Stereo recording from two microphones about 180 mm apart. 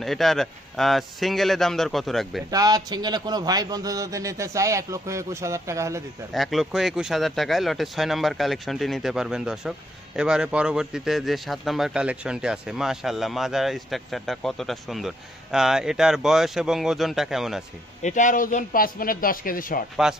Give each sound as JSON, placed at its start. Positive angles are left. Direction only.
{"t": 0.0, "sound": "speech", "side_deg": 0}
{"t": 2.5, "sound": "a man's voice", "side_deg": -20}
{"t": 6.3, "sound": "speech", "side_deg": 0}
{"t": 18.0, "sound": "speech", "side_deg": 45}